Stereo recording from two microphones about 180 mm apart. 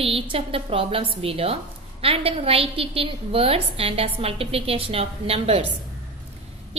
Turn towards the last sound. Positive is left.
turn(degrees=-35)  # may be behind; listen again after turning